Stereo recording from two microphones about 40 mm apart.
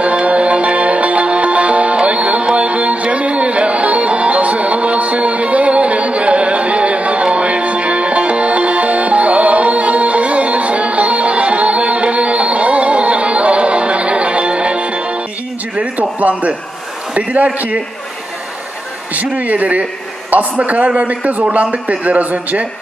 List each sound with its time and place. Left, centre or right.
0.0 s music: right
15.7 s a sound: right
19.1 s a man's voice: right